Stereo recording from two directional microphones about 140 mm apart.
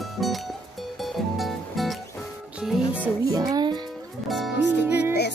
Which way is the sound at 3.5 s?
30° right (ahead or behind).